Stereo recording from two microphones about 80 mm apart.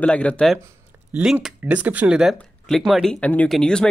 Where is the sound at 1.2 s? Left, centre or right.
Centre.